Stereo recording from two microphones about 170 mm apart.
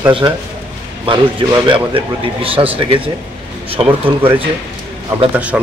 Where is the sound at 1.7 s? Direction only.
30° right (ahead or behind).